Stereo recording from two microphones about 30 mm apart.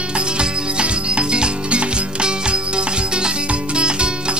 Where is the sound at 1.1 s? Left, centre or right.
Right.